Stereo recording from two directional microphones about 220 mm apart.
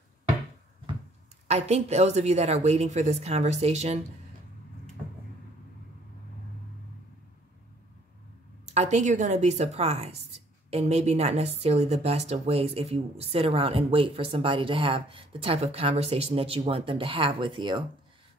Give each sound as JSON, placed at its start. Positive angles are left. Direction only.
{"t": 1.5, "sound": "a woman's voice", "side_deg": -30}
{"t": 8.6, "sound": "a woman's voice", "side_deg": -30}